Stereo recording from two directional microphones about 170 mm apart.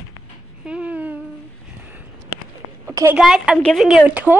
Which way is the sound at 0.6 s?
5° right (ahead or behind).